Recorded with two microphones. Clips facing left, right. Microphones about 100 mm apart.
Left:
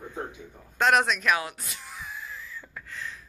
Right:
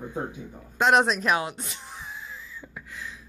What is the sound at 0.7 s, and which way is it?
Speech, 20° right (ahead or behind).